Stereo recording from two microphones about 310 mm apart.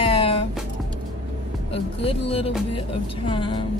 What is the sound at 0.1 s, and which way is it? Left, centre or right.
Music, centre.